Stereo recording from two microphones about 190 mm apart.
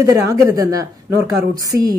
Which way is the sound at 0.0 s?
15° right (ahead or behind).